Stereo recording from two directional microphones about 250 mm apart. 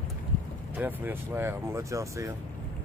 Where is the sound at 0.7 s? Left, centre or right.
Centre.